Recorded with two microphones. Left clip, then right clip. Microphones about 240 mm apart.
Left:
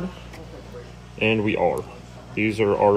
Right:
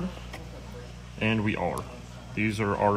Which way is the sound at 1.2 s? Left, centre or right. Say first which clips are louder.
Left 8 dB; left.